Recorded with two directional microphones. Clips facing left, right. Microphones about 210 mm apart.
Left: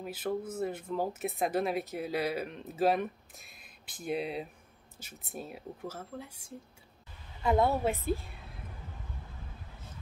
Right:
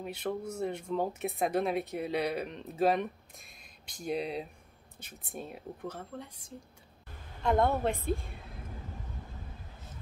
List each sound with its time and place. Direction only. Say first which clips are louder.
0.0 s speech: left 1 dB; centre (ahead or behind)
7.4 s speech: even; 5° left (ahead or behind)